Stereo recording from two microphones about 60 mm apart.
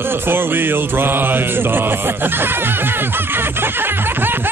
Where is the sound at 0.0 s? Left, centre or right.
Right.